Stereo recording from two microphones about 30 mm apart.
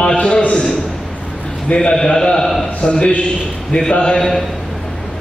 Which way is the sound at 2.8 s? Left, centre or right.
Left.